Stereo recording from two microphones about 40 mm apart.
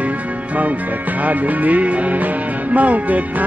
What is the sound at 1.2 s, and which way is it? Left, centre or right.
Speech, right.